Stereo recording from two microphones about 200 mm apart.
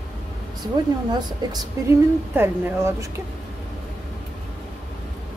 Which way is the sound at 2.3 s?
10° right (ahead or behind).